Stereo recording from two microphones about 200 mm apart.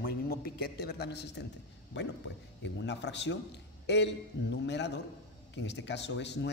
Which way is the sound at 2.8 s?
60° left (ahead or behind).